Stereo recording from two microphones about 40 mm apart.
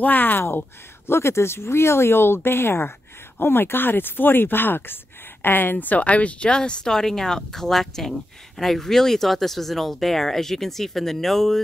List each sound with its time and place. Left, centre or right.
0.0 s speech: left
3.3 s speech: left
6.5 s speech: left; by 11.6 s centre